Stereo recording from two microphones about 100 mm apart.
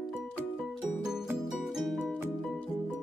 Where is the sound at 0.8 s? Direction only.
5° right (ahead or behind).